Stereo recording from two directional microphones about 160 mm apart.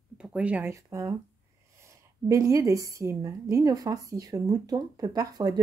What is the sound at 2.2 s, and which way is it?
A woman's voice, 20° right (ahead or behind).